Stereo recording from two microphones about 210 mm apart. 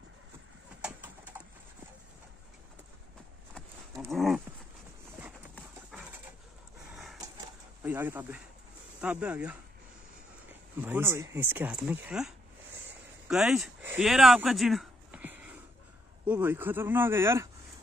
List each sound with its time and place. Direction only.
0.8 s horse: 10° right (ahead or behind)
4.1 s dog: centre (ahead or behind)
6.9 s a sound: centre (ahead or behind)
7.8 s speech: 10° right (ahead or behind)
10.8 s speech: 10° right (ahead or behind)